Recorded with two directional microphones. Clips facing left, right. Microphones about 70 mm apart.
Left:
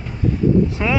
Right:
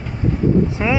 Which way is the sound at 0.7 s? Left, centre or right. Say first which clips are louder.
Right 1 dB; centre.